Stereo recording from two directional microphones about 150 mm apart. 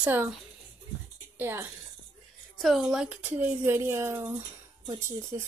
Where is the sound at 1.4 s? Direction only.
15° right (ahead or behind).